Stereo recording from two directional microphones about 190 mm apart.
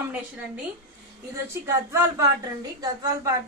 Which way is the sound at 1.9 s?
15° right (ahead or behind).